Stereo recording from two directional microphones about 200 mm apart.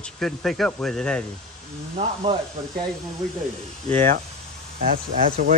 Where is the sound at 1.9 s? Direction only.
30° right (ahead or behind).